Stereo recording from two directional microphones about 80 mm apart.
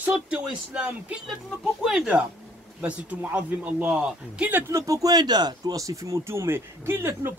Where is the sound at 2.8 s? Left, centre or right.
Centre.